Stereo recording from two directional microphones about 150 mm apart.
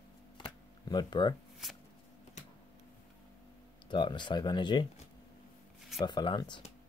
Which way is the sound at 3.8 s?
30° left (ahead or behind).